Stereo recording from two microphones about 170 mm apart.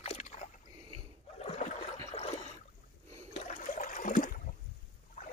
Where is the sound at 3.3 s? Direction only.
50° left (ahead or behind).